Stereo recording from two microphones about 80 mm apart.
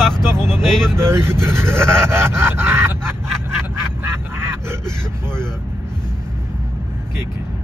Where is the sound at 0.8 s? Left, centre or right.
Right.